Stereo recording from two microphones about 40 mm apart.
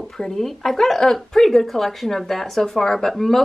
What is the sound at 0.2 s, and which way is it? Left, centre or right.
Speech, centre.